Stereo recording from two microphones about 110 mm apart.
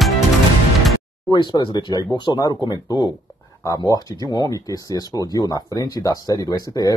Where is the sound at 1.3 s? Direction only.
45° left (ahead or behind).